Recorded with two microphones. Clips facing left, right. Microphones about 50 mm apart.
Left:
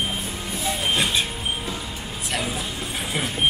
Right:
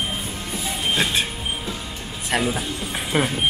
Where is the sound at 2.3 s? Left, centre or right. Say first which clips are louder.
Right 6 dB; right.